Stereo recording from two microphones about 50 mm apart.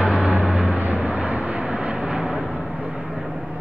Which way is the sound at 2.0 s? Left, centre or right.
Centre.